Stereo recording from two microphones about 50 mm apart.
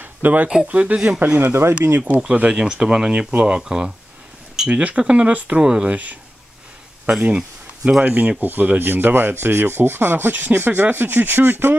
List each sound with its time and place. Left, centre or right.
0.0 s a sound: right
0.7 s speech: right
1.4 s speech: right
2.0 s speech: right
2.5 s speech: centre; by 6.1 s right
7.2 s a sound: right
8.0 s speech: right